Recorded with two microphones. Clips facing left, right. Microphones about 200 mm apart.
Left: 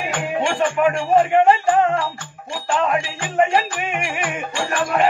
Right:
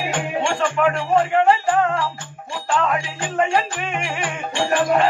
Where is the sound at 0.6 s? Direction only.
20° left (ahead or behind).